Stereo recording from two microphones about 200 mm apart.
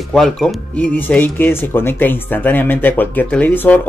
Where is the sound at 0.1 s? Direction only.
Centre (ahead or behind).